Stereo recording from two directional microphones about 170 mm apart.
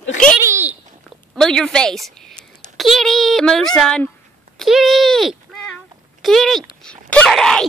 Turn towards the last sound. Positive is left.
turn(degrees=0)  # may be behind; listen again after turning